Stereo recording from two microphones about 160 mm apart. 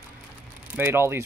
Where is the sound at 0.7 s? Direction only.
15° right (ahead or behind).